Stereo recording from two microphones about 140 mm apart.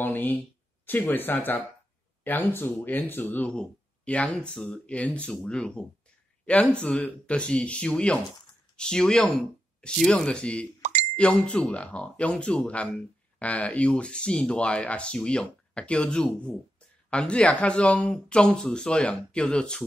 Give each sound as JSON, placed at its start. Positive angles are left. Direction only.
{"t": 0.0, "sound": "speech", "side_deg": 15}
{"t": 10.8, "sound": "plop", "side_deg": -60}
{"t": 11.1, "sound": "speech", "side_deg": 5}